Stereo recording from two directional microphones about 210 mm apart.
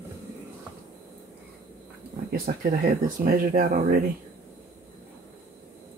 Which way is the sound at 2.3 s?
45° right (ahead or behind).